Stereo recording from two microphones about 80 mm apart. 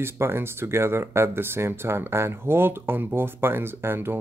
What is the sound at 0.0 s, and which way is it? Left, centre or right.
Speech, right.